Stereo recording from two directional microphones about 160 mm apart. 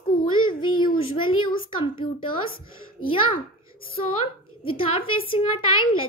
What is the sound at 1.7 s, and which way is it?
A child's voice, 30° left (ahead or behind).